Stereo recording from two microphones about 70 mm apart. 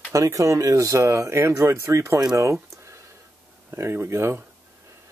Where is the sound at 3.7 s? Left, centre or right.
Right.